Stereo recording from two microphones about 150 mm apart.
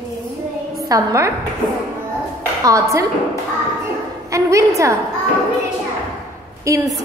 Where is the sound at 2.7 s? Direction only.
20° right (ahead or behind).